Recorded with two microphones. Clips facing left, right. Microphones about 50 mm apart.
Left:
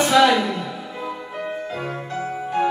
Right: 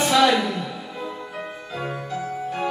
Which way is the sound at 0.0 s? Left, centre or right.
Centre.